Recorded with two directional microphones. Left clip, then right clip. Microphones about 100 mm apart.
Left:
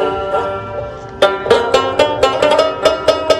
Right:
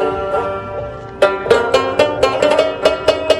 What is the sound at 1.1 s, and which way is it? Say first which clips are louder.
Music: left 1 dB; 30° left (ahead or behind).